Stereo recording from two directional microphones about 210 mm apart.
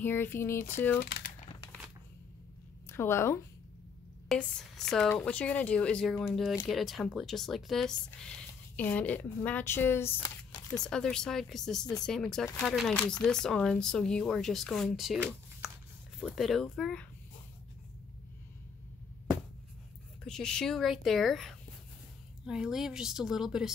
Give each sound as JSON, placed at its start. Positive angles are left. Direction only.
{"t": 0.0, "sound": "speech", "side_deg": 10}
{"t": 1.0, "sound": "speech", "side_deg": 50}
{"t": 2.9, "sound": "a woman's voice", "side_deg": 10}
{"t": 10.8, "sound": "speech", "side_deg": 5}
{"t": 20.2, "sound": "speech", "side_deg": 5}